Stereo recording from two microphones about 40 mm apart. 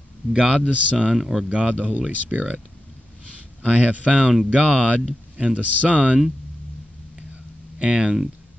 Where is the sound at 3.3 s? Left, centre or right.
Right.